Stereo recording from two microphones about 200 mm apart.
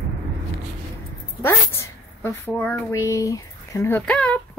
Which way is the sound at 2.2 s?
15° left (ahead or behind).